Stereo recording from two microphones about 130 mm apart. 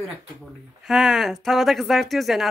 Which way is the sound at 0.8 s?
Centre (ahead or behind).